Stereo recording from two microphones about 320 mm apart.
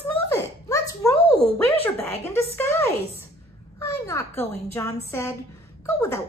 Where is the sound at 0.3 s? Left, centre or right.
Centre.